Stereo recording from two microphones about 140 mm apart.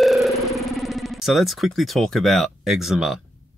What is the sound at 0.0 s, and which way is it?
Music, centre (ahead or behind).